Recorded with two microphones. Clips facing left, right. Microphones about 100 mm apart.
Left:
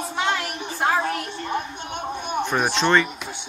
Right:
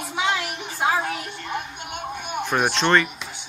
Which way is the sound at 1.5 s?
25° left (ahead or behind).